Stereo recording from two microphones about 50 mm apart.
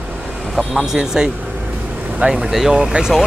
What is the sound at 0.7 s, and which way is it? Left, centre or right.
Speech, centre.